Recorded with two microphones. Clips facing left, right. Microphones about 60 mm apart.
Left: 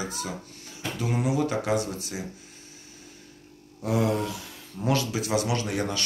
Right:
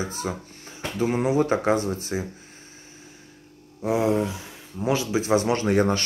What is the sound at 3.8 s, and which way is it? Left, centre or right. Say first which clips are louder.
Speech: right 3 dB; right.